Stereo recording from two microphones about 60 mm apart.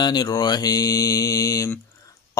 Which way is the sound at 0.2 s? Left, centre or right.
Left.